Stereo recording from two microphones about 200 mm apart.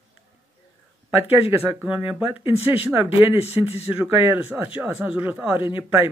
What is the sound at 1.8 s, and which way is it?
Speech, 10° right (ahead or behind).